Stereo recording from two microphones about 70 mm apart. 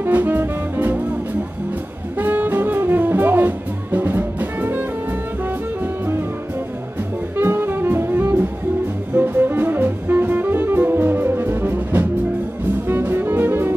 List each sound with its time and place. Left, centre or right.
0.0 s music: right
2.1 s music: right
7.3 s jazz: right
9.1 s music: right